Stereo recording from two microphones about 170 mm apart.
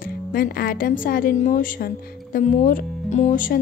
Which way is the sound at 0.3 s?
60° left (ahead or behind).